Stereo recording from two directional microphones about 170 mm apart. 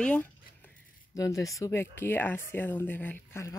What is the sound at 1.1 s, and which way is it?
Speech, 20° left (ahead or behind).